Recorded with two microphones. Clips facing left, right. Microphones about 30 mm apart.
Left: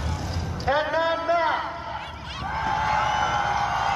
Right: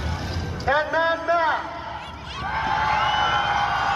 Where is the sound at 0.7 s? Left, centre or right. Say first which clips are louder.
Right 2 dB; centre.